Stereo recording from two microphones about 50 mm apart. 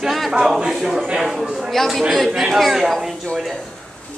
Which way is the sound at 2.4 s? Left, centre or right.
Centre.